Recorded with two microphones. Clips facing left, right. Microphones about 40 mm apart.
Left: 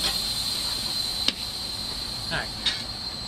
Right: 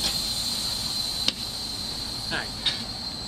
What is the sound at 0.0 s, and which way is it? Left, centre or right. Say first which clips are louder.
Vehicle: left 1 dB; centre.